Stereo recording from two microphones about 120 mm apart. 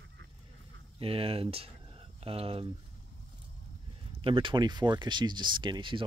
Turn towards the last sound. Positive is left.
turn(degrees=-40)  # may be behind; listen again after turning